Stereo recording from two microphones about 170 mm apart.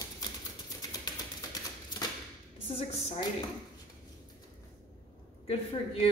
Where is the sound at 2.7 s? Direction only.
35° left (ahead or behind).